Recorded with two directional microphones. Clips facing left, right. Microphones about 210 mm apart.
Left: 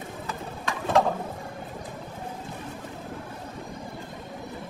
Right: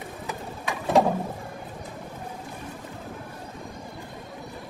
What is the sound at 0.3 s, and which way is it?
Bird, 15° right (ahead or behind).